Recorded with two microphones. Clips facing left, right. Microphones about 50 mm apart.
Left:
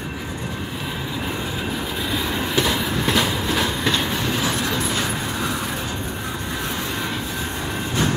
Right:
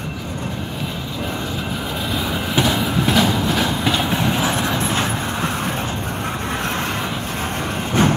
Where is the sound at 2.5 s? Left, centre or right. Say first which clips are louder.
Right 4 dB; centre.